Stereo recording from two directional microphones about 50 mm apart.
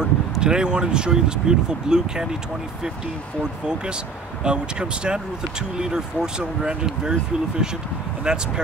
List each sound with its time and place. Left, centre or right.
0.0 s speech: centre
4.4 s speech: centre
8.3 s speech: centre